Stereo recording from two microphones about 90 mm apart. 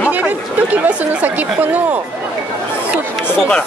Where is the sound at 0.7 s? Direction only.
20° right (ahead or behind).